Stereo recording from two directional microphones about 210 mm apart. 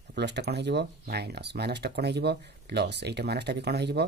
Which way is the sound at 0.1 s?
55° right (ahead or behind).